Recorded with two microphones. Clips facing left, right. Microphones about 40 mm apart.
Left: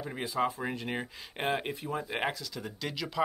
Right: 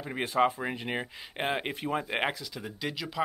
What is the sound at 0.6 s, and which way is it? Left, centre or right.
Speech, right.